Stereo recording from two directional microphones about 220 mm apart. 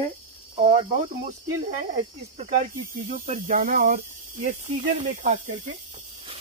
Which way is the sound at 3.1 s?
35° right (ahead or behind).